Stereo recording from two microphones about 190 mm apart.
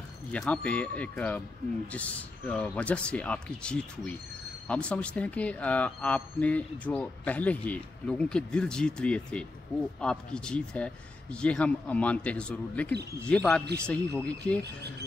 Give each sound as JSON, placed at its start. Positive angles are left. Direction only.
{"t": 0.3, "sound": "speech", "side_deg": 5}
{"t": 14.6, "sound": "speech", "side_deg": -60}